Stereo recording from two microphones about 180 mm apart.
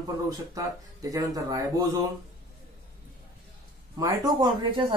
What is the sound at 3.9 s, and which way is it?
Speech, 20° right (ahead or behind).